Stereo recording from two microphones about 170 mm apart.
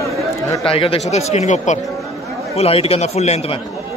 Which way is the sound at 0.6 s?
35° left (ahead or behind).